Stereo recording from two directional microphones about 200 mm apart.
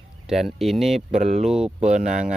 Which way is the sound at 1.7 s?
35° right (ahead or behind).